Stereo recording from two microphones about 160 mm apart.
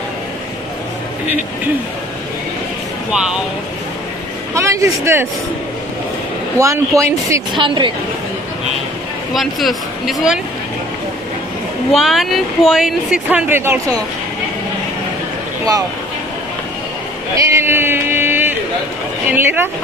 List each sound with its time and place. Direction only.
3.1 s speech: 5° right (ahead or behind)
4.6 s speech: 20° right (ahead or behind)
6.6 s speech: 20° right (ahead or behind)
7.5 s a woman's voice: 30° right (ahead or behind)
9.3 s speech: centre (ahead or behind)
11.9 s speech: centre (ahead or behind); by 14.0 s 20° right (ahead or behind)
17.5 s a sound: 15° right (ahead or behind)
19.3 s speech: 15° right (ahead or behind)